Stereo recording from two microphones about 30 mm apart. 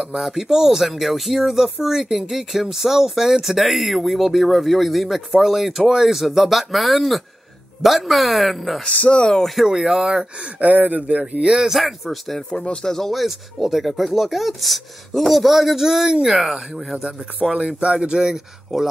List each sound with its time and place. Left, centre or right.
0.2 s speech: centre
8.8 s speech: left
9.7 s speech: centre
10.6 s speech: right
11.0 s music: right
11.7 s speech: centre
13.1 s speech: centre; by 16.3 s right
16.3 s speech: centre
16.9 s speech: right
17.5 s speech: right
17.7 s speech: right
18.7 s speech: centre